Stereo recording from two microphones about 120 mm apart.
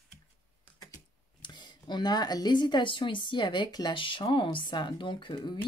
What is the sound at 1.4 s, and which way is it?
Speech, 40° left (ahead or behind).